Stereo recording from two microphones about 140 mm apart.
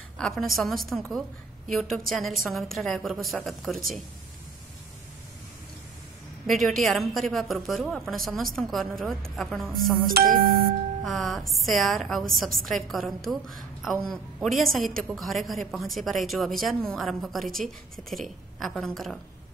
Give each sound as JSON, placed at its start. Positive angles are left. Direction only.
{"t": 0.2, "sound": "a woman's voice", "side_deg": 0}
{"t": 6.4, "sound": "a woman's voice", "side_deg": 0}
{"t": 10.1, "sound": "music", "side_deg": -90}
{"t": 11.1, "sound": "a woman's voice", "side_deg": 0}